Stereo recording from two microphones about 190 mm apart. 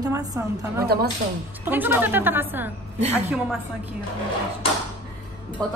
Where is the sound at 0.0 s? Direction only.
20° right (ahead or behind).